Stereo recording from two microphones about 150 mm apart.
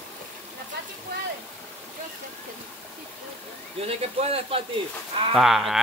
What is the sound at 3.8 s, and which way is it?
Speech, 40° right (ahead or behind).